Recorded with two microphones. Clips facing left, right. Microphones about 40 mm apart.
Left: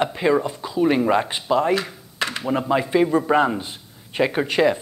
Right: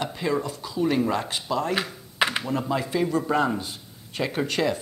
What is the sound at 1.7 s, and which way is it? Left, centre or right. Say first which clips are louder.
Computer keyboard: left 5 dB; centre.